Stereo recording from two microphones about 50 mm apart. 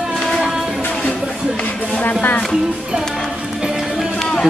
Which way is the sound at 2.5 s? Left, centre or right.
Centre.